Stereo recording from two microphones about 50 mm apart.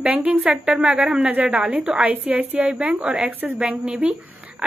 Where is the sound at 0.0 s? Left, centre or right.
Right.